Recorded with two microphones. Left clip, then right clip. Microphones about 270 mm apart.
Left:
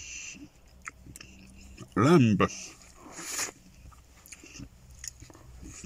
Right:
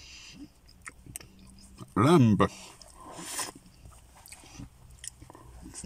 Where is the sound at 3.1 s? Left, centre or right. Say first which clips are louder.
Left 2 dB; right.